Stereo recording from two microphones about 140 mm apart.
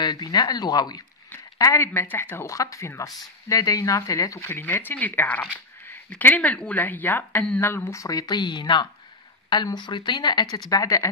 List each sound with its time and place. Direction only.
0.0 s speech: 30° left (ahead or behind); by 7.7 s 10° left (ahead or behind)
7.7 s speech: 20° left (ahead or behind)